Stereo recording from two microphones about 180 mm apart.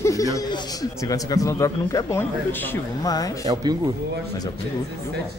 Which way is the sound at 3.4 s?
20° right (ahead or behind).